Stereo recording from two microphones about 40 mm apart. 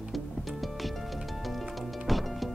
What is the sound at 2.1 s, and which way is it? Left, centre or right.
Music, centre.